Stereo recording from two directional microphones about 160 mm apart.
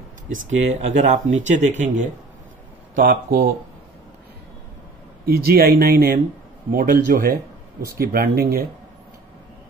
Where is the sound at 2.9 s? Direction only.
65° right (ahead or behind).